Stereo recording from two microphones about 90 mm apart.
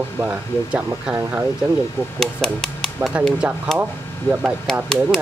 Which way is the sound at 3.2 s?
15° right (ahead or behind).